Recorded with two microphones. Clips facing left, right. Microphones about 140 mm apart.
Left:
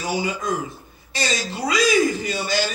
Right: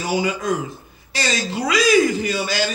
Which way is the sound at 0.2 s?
70° right (ahead or behind).